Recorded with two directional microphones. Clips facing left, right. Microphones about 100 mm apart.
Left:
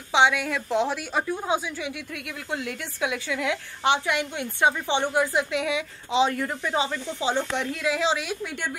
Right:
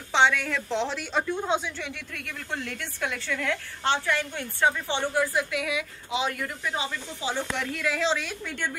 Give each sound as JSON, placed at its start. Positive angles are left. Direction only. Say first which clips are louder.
{"t": 0.1, "sound": "a woman's voice", "louder": "left 2 dB", "side_deg": 10}
{"t": 7.2, "sound": "a woman's voice", "louder": "left 4 dB", "side_deg": 25}